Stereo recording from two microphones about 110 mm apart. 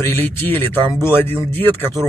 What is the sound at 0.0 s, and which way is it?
Speech, 15° left (ahead or behind).